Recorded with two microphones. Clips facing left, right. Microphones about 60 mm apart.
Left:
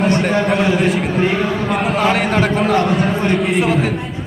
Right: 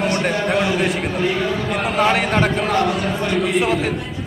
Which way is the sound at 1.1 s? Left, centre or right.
Left.